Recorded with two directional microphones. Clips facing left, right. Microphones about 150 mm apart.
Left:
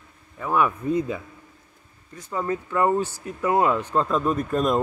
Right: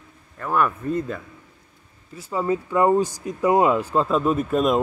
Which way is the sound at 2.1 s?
10° right (ahead or behind).